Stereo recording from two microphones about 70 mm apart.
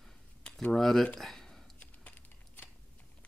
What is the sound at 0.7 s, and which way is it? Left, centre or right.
Speech, centre.